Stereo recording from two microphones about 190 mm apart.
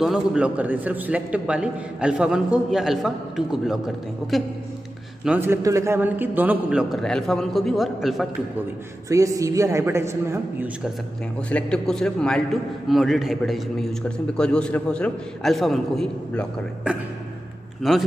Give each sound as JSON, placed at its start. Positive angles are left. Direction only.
{"t": 0.0, "sound": "a man's voice", "side_deg": -5}
{"t": 9.1, "sound": "a man's voice", "side_deg": -15}
{"t": 11.5, "sound": "a man's voice", "side_deg": 5}